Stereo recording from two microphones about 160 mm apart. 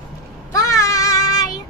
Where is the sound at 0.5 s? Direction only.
20° left (ahead or behind).